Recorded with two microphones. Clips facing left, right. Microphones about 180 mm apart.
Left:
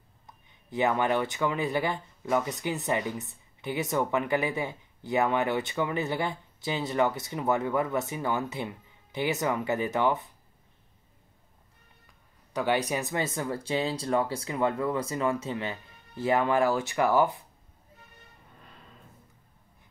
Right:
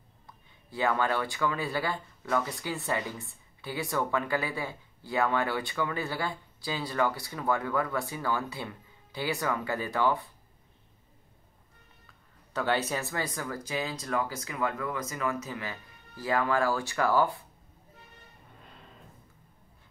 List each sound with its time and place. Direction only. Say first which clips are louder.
0.3 s speech: left 6 dB; 20° left (ahead or behind)
12.5 s speech: left 2 dB; 15° left (ahead or behind)